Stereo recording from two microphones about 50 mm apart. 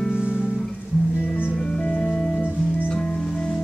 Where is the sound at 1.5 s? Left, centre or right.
Centre.